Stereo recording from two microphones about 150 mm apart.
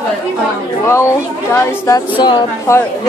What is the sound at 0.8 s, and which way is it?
A woman's voice, 20° left (ahead or behind).